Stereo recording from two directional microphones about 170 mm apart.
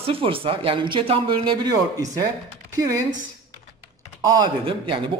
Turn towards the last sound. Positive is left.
turn(degrees=-30)  # may be behind; listen again after turning